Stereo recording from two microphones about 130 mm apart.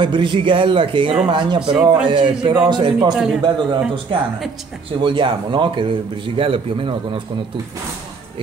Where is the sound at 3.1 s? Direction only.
5° right (ahead or behind).